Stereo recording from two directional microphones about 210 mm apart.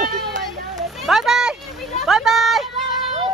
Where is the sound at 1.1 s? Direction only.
Centre (ahead or behind).